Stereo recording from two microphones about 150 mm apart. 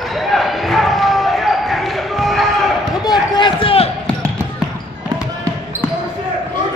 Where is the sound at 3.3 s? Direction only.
35° left (ahead or behind).